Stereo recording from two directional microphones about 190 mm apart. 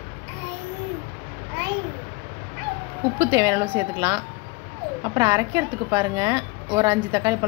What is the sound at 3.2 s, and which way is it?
A woman's voice, 20° right (ahead or behind).